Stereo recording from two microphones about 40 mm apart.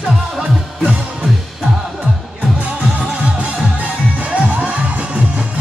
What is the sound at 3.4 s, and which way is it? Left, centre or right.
Music, right.